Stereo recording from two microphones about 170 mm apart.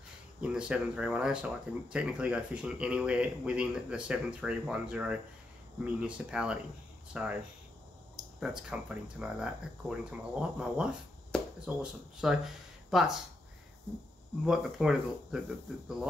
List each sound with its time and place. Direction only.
0.4 s speech: 5° right (ahead or behind)
8.4 s speech: 5° right (ahead or behind)
14.4 s speech: 5° right (ahead or behind)